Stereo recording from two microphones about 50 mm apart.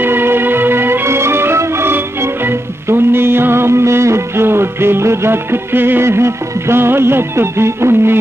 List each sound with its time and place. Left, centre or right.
0.0 s music: right
6.0 s music: right